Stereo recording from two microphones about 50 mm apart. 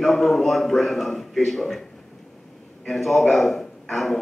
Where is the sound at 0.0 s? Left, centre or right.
Centre.